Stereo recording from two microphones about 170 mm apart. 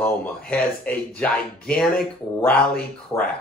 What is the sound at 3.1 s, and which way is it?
Speech, 15° left (ahead or behind).